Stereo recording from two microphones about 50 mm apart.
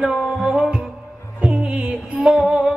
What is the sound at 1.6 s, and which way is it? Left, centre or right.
Music, right.